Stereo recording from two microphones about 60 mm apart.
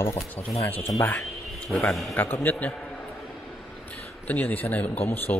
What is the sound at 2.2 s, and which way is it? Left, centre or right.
Speech, left.